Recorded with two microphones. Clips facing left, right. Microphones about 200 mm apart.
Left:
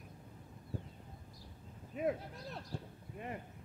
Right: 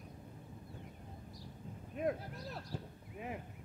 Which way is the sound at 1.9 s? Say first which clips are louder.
Left 1 dB; centre (ahead or behind).